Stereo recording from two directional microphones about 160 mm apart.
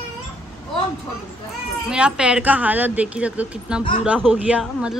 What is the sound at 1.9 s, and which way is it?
Speech, 5° right (ahead or behind).